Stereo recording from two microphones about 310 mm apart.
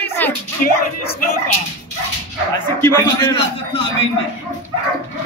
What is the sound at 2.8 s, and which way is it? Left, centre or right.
A man's voice, centre.